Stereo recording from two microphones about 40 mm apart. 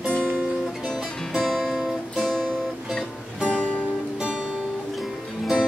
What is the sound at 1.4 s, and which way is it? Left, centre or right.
Music, centre.